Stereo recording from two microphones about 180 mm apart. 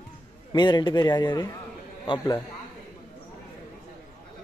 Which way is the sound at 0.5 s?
25° left (ahead or behind).